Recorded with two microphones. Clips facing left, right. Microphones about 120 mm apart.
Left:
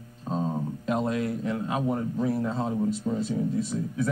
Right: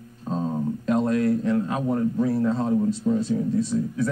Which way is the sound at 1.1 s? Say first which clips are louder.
Right 6 dB; 20° left (ahead or behind).